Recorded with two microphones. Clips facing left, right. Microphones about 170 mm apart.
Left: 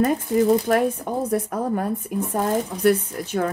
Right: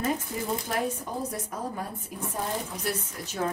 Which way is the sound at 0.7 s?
60° left (ahead or behind).